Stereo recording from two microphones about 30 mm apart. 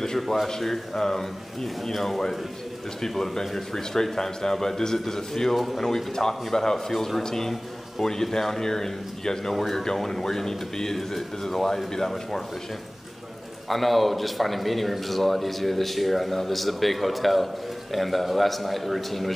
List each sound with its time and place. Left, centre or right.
0.0 s a man's voice: centre
9.5 s speech: centre
13.7 s speech: centre